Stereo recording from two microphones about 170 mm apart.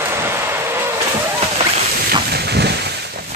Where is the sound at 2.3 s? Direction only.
75° right (ahead or behind).